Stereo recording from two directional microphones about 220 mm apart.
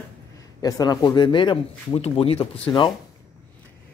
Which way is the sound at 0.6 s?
15° left (ahead or behind).